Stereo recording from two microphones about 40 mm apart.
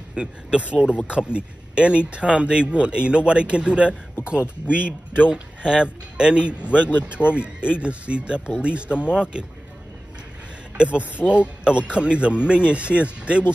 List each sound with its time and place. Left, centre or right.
0.1 s speech: right
10.8 s speech: right